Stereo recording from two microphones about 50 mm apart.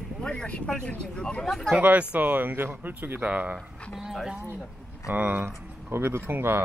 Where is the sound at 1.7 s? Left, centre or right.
Right.